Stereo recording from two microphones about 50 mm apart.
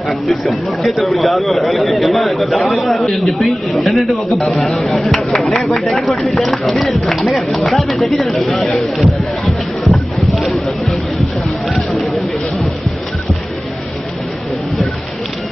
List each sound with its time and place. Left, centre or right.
0.3 s speech: centre
5.4 s speech: centre
9.8 s a sound: centre
11.7 s speech: centre